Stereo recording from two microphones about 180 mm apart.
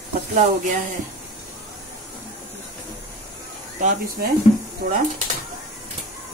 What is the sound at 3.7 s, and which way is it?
Speech, 45° right (ahead or behind).